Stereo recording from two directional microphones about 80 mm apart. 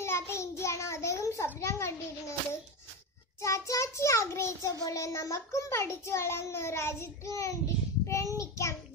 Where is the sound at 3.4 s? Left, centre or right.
Left.